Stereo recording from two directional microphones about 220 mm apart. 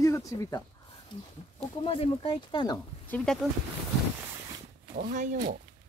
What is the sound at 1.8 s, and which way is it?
Speech, 25° left (ahead or behind).